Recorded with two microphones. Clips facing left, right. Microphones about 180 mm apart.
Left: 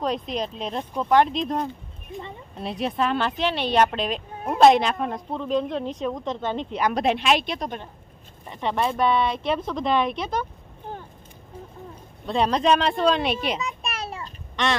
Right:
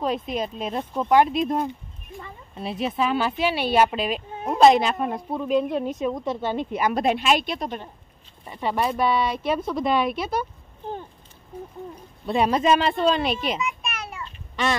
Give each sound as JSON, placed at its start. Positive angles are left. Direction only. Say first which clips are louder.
{"t": 0.0, "sound": "speech", "louder": "right 1 dB", "side_deg": -5}
{"t": 12.3, "sound": "speech", "louder": "right 1 dB", "side_deg": -5}
{"t": 13.6, "sound": "a sound", "louder": "right 1 dB", "side_deg": 35}
{"t": 14.6, "sound": "speech", "louder": "even", "side_deg": -5}